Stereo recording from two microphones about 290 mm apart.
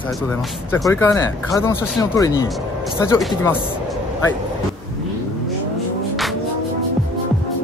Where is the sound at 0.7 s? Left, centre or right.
Centre.